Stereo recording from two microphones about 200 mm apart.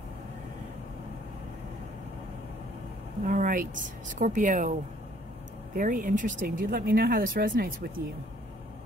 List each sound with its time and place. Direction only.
3.3 s a sound: 40° right (ahead or behind)
4.1 s speech: 40° right (ahead or behind)
5.8 s speech: 40° right (ahead or behind)